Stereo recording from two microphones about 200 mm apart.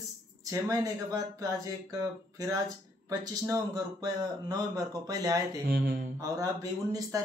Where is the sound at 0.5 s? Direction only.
15° right (ahead or behind).